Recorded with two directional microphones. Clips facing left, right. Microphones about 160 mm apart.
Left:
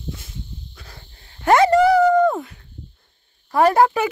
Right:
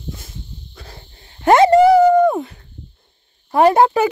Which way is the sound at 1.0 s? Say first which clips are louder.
Right 3 dB; 25° right (ahead or behind).